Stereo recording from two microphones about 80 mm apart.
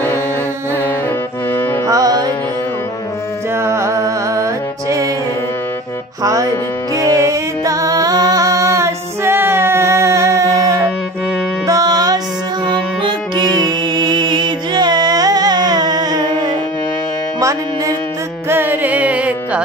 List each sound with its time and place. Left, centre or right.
0.7 s music: left
1.9 s music: right
3.5 s music: right
6.2 s music: right
12.6 s music: right
17.4 s music: right
18.5 s music: right